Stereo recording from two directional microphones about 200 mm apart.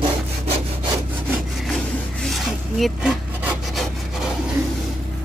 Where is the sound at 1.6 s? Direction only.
Centre (ahead or behind).